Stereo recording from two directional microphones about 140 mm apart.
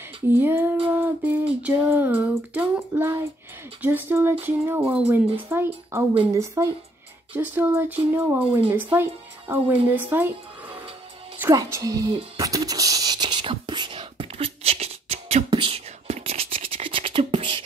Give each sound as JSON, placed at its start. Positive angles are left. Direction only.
{"t": 0.3, "sound": "speech", "side_deg": -15}
{"t": 0.8, "sound": "humming", "side_deg": -15}
{"t": 1.6, "sound": "speech", "side_deg": -15}
{"t": 3.8, "sound": "a woman's voice", "side_deg": -15}
{"t": 11.4, "sound": "a woman's voice", "side_deg": -25}
{"t": 12.4, "sound": "whispering", "side_deg": -25}
{"t": 15.5, "sound": "scratch", "side_deg": -40}